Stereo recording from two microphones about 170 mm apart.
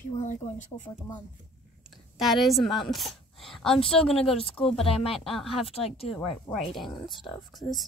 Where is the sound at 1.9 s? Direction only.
Centre (ahead or behind).